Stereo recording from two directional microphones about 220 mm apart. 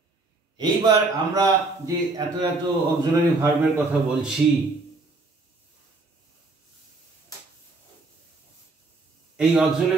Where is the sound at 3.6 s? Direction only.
5° right (ahead or behind).